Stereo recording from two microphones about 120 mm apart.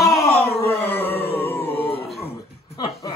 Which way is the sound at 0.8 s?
15° left (ahead or behind).